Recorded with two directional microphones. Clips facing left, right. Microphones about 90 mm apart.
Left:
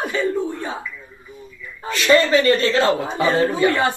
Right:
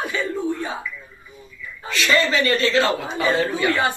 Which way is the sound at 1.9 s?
40° left (ahead or behind).